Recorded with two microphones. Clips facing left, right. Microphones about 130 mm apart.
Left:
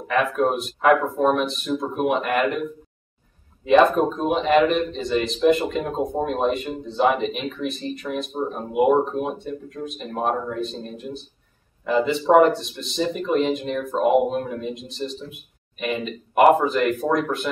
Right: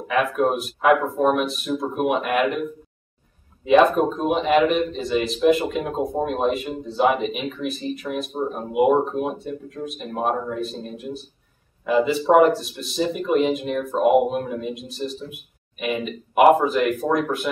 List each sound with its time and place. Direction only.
0.1 s a man's voice: 5° right (ahead or behind)
3.6 s a man's voice: 5° right (ahead or behind)